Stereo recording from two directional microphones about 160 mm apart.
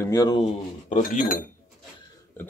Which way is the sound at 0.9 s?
55° left (ahead or behind).